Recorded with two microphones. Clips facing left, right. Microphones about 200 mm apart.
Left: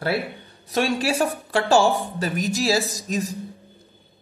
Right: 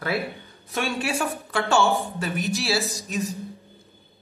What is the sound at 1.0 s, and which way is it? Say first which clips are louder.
Speech: left 4 dB; 35° left (ahead or behind).